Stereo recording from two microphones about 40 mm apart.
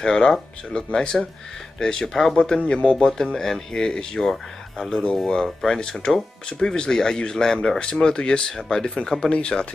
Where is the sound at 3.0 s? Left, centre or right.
Centre.